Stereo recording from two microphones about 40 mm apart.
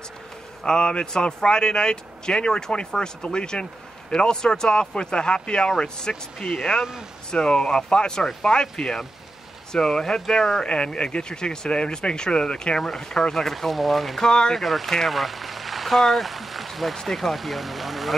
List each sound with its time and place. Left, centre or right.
0.7 s speech: left
12.7 s speech: centre
14.2 s speech: centre
14.6 s speech: centre